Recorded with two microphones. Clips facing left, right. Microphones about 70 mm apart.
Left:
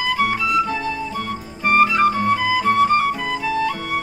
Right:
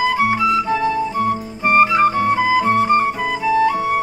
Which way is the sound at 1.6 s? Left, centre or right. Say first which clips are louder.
Right 2 dB; centre.